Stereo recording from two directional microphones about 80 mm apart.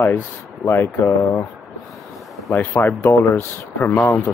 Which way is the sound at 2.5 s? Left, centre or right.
Left.